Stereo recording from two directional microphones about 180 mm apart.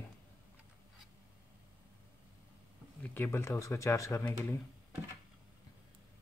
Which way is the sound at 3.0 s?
10° left (ahead or behind).